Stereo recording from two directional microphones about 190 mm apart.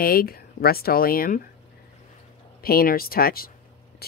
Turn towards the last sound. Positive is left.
turn(degrees=50)  # may be behind; listen again after turning